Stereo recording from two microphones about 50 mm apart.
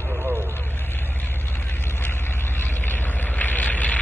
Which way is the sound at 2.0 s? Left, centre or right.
Left.